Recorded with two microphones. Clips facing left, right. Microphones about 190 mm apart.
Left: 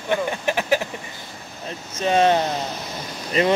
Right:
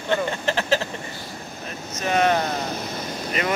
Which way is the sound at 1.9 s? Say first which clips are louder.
Left 3 dB; 30° left (ahead or behind).